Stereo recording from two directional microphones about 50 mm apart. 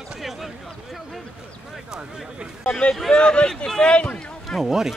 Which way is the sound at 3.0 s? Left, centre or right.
Centre.